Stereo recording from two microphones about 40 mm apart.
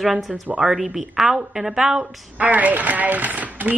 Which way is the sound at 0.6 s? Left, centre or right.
Right.